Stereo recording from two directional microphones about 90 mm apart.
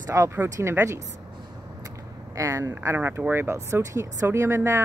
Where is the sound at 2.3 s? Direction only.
35° right (ahead or behind).